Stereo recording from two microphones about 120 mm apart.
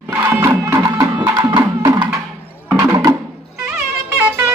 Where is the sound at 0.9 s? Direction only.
35° right (ahead or behind).